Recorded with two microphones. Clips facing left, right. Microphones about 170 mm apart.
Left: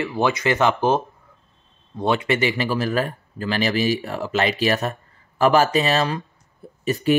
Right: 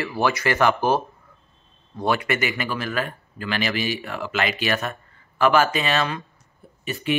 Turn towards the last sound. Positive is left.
turn(degrees=40)  # may be behind; listen again after turning